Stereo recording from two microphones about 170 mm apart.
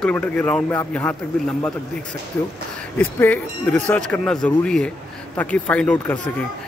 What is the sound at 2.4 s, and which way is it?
Speech, 10° left (ahead or behind).